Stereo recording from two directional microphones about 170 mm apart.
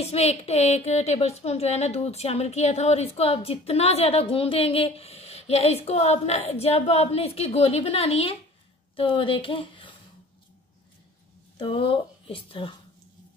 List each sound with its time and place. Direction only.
0.0 s a woman's voice: 35° left (ahead or behind)
11.5 s speech: 30° left (ahead or behind)